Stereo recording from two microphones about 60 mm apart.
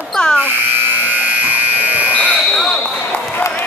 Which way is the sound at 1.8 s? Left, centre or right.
Right.